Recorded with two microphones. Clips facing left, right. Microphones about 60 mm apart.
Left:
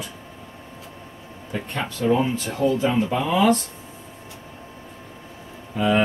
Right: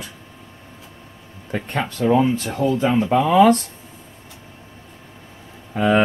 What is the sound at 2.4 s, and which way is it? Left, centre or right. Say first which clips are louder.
Speech: right 1 dB; right.